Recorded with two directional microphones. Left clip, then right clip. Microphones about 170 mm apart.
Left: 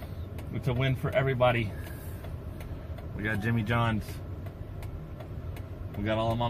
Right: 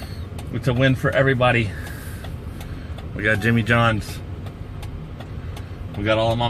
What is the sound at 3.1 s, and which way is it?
Speech, 20° right (ahead or behind).